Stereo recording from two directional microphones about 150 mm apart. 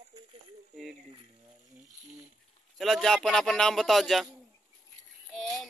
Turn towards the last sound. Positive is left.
turn(degrees=0)  # may be behind; listen again after turning